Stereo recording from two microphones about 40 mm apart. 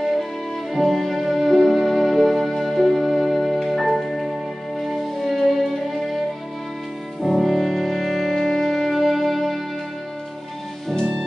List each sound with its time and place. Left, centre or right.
0.0 s music: centre
7.2 s music: centre
10.9 s music: centre